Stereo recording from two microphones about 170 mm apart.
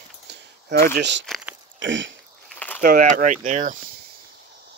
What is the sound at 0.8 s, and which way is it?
Speech, 90° right.